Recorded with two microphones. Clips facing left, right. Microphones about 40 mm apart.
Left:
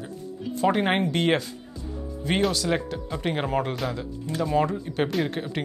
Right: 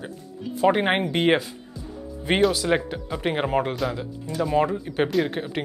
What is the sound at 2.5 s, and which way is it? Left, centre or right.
Speech, centre.